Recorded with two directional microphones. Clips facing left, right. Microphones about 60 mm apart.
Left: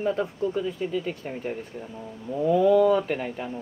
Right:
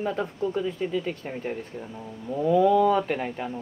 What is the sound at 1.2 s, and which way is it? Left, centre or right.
Speech, centre.